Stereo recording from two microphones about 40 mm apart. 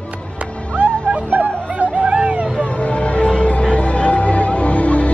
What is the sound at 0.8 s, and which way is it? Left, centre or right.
Music, right.